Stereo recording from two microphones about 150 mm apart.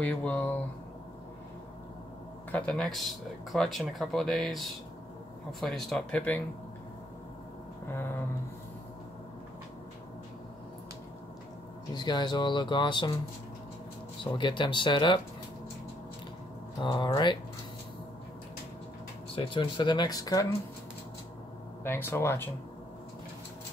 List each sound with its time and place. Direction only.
0.0 s speech: 10° left (ahead or behind)
2.5 s speech: 5° left (ahead or behind)
11.9 s speech: 30° left (ahead or behind)
14.2 s speech: 30° left (ahead or behind)
16.8 s speech: 30° left (ahead or behind)
19.3 s speech: 35° left (ahead or behind)
21.8 s speech: 15° left (ahead or behind)